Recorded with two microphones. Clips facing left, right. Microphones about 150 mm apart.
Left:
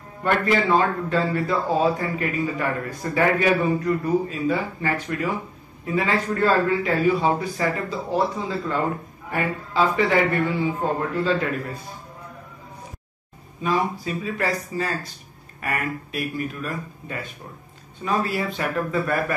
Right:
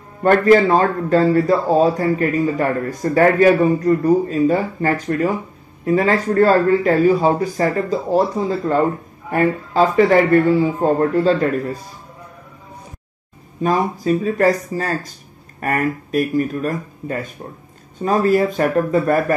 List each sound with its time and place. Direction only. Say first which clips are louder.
0.2 s a man's voice: right 9 dB; 40° right (ahead or behind)
13.6 s a man's voice: right 5 dB; 45° right (ahead or behind)